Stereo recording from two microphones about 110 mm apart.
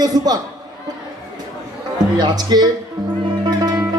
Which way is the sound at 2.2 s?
40° right (ahead or behind).